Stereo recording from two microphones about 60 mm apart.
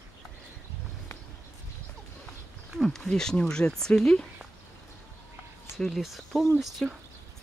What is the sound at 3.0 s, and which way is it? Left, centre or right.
Speech, centre.